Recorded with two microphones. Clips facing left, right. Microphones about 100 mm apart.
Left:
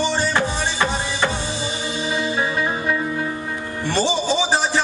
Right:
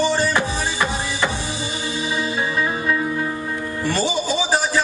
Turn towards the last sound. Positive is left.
turn(degrees=25)  # may be behind; listen again after turning